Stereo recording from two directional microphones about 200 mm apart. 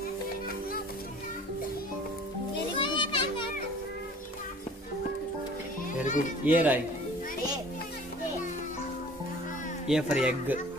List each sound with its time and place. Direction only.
2.8 s children playing: 25° left (ahead or behind)
6.0 s children playing: 40° left (ahead or behind)
6.4 s speech: 10° right (ahead or behind)
9.8 s speech: 5° right (ahead or behind)